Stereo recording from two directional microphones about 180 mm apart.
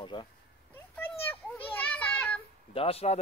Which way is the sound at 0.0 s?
25° left (ahead or behind).